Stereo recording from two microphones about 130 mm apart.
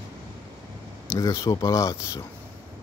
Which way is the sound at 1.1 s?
25° left (ahead or behind).